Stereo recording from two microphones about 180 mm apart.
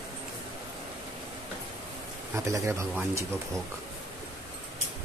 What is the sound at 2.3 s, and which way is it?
Speech, 15° right (ahead or behind).